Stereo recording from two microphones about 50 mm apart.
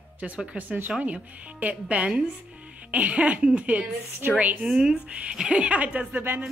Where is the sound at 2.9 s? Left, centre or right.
Right.